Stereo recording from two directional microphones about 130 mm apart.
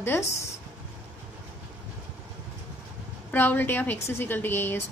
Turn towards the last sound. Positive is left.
turn(degrees=15)  # may be behind; listen again after turning